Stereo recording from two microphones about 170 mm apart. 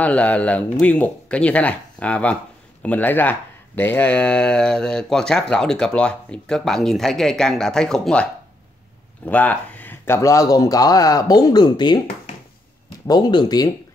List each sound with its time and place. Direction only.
0.0 s speech: 5° left (ahead or behind); by 12.0 s 25° left (ahead or behind)
13.0 s speech: 25° left (ahead or behind)